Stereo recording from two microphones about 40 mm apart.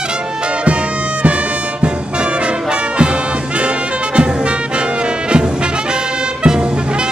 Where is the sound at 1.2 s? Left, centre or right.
Right.